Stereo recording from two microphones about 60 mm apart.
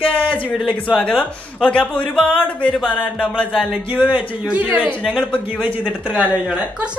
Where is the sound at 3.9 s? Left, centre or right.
Right.